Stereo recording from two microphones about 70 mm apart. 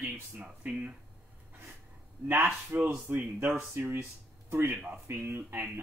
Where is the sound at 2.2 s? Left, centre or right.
Right.